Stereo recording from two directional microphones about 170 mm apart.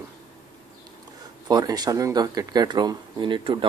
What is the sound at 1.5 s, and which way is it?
Speech, 25° right (ahead or behind).